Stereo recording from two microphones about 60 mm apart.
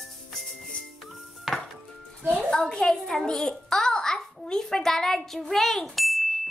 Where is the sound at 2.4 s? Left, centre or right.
Centre.